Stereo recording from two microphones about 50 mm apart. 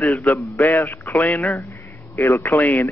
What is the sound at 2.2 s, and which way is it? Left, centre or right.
Speech, left.